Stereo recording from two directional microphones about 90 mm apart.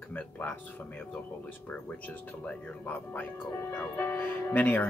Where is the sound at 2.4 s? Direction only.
15° left (ahead or behind).